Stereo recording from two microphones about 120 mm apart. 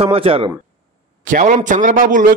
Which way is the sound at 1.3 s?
90° right.